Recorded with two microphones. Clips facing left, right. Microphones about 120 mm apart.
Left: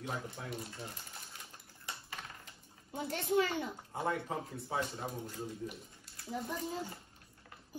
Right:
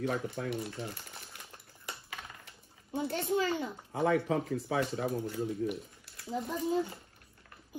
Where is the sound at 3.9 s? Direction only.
75° right (ahead or behind).